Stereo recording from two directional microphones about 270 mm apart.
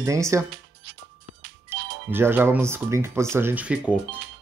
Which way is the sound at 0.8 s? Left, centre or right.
Right.